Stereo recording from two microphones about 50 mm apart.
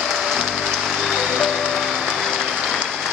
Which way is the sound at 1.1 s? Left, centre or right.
Centre.